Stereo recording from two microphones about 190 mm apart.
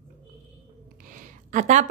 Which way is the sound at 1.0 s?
45° right (ahead or behind).